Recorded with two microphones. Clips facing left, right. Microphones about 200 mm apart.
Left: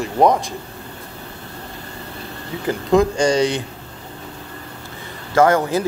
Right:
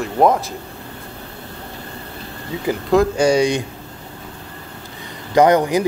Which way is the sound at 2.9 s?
5° right (ahead or behind).